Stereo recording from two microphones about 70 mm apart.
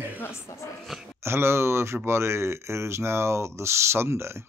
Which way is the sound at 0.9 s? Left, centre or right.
Centre.